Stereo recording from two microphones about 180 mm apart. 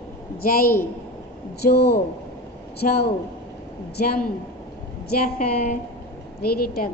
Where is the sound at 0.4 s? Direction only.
55° left (ahead or behind).